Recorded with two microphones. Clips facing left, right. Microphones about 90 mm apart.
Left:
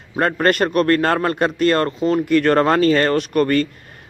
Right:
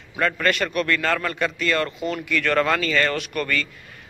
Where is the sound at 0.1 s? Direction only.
40° left (ahead or behind).